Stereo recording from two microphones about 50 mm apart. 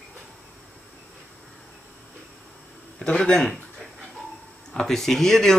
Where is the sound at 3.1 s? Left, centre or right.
Left.